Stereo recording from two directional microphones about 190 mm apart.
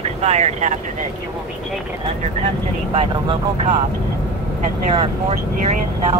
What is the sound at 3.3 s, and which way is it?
Speech, 35° right (ahead or behind).